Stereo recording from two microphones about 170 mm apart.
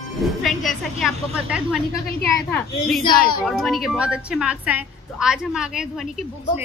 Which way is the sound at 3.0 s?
25° left (ahead or behind).